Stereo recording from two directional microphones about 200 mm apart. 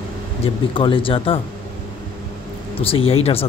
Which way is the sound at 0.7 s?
25° left (ahead or behind).